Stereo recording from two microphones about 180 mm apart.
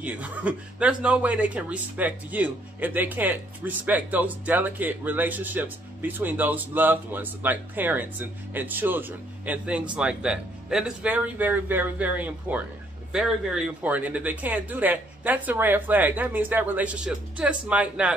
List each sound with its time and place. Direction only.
0.0 s speech: 10° right (ahead or behind)